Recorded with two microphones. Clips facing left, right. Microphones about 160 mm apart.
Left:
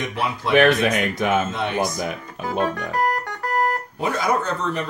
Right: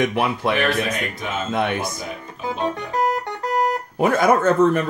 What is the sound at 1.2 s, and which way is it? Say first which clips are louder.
Speech: left 8 dB; 65° left (ahead or behind).